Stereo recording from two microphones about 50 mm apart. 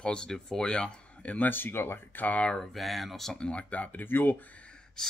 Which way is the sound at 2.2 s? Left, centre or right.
Left.